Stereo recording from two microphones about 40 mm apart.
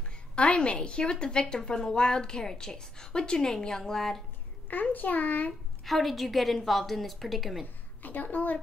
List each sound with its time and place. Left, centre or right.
0.4 s a woman's voice: left; by 4.2 s centre
4.9 s a woman's voice: left
5.9 s a woman's voice: centre
8.0 s a woman's voice: left